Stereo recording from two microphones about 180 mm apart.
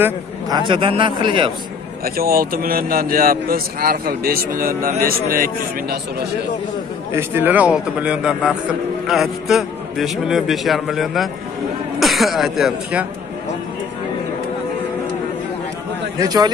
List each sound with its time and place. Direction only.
0.0 s speech: 25° right (ahead or behind)
2.0 s a man's voice: 55° right (ahead or behind)
7.1 s a man's voice: 10° right (ahead or behind)
16.2 s speech: 20° right (ahead or behind)